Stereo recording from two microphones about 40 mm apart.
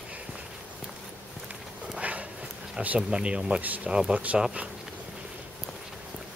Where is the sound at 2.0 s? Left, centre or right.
Right.